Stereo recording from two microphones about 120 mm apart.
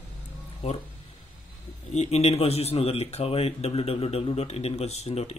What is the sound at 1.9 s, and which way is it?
Speech, 65° left (ahead or behind).